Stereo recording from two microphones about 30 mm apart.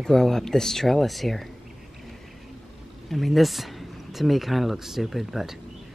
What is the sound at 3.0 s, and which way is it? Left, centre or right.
Speech, centre.